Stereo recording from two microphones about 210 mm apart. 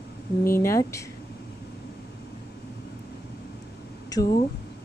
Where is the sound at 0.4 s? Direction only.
10° left (ahead or behind).